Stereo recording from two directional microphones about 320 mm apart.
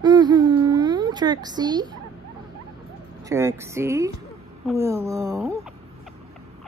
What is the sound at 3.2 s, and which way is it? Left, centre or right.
Speech, centre.